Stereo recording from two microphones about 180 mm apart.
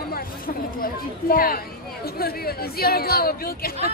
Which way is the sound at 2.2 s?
60° left (ahead or behind).